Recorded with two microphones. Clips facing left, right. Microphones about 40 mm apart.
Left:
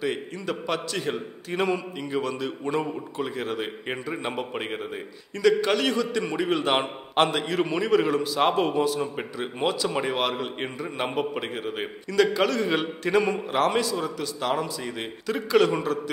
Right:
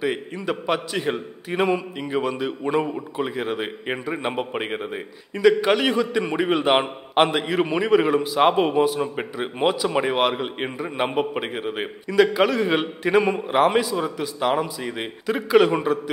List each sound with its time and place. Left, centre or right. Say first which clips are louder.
0.0 s a man's voice: right 3 dB; centre